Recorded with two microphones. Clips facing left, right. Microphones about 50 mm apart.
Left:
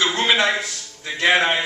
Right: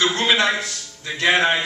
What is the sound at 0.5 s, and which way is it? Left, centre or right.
Speech, centre.